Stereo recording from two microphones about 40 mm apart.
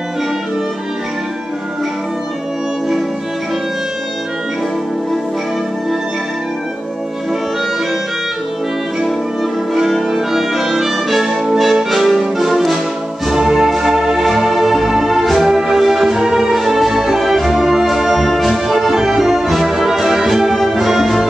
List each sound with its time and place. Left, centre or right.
9.8 s music: centre